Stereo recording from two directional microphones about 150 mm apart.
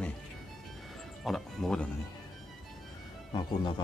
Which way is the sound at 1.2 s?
Centre (ahead or behind).